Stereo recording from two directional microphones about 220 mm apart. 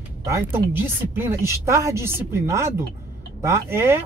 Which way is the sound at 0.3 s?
10° right (ahead or behind).